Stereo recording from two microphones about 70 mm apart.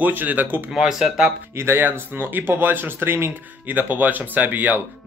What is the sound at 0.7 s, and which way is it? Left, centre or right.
Speech, centre.